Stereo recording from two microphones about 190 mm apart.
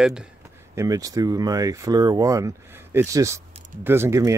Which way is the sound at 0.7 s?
20° right (ahead or behind).